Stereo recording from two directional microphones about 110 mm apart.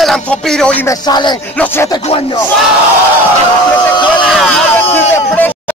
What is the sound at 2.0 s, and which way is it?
Speech, 55° left (ahead or behind).